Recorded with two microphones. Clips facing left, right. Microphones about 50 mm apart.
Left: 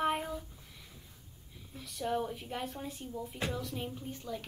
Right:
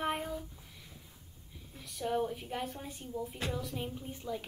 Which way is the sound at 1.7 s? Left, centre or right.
Centre.